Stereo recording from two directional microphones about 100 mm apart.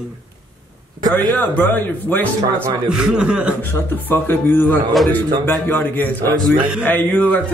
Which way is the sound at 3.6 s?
20° left (ahead or behind).